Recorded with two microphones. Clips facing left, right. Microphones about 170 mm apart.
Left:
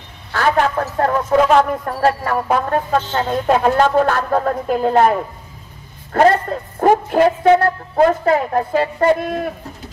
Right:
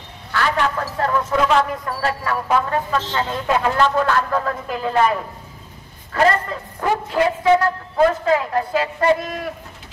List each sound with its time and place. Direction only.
0.3 s speech: 45° left (ahead or behind)
6.1 s a man's voice: 50° left (ahead or behind)